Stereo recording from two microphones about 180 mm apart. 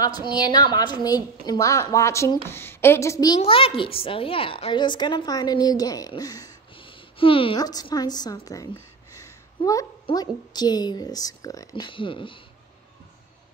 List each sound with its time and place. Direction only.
0.0 s a woman's voice: 25° left (ahead or behind)
3.3 s a woman's voice: 30° left (ahead or behind)
9.1 s a sound: 20° left (ahead or behind)
10.5 s a woman's voice: 20° left (ahead or behind)